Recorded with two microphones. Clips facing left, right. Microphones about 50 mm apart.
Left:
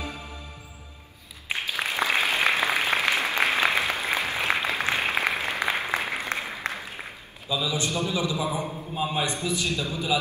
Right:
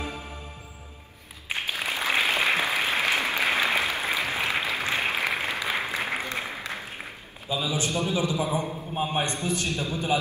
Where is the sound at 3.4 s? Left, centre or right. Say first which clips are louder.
Left 2 dB; left.